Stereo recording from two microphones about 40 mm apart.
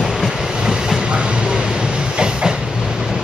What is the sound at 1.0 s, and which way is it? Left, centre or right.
Train, right.